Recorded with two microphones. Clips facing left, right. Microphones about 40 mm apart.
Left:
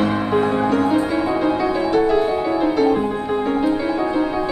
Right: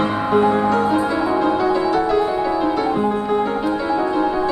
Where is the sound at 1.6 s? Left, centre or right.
Left.